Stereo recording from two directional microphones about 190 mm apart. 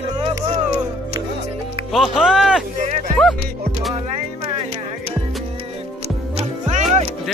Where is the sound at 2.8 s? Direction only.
40° right (ahead or behind).